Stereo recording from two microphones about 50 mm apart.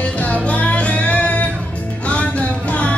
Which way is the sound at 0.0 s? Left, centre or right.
Left.